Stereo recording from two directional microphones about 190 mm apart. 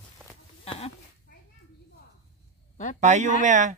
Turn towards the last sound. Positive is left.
turn(degrees=-40)  # may be behind; listen again after turning